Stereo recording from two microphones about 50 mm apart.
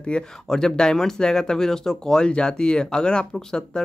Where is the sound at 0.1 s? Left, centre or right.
Centre.